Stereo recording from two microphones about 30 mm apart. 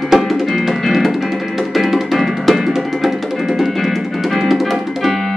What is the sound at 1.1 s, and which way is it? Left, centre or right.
Music, centre.